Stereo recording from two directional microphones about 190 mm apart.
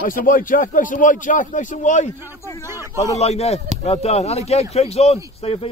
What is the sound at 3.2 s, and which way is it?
Speech, 35° left (ahead or behind).